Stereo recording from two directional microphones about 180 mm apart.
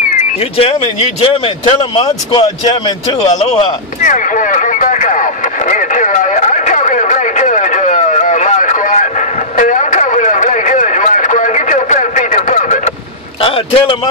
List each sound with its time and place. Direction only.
0.4 s a man's voice: 30° left (ahead or behind)
3.3 s a sound: 40° left (ahead or behind)
13.4 s vehicle: 30° left (ahead or behind)